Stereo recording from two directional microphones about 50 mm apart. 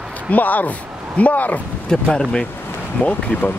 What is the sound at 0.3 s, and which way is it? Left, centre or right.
Speech, left.